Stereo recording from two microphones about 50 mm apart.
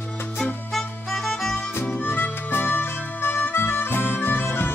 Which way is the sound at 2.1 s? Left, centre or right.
Left.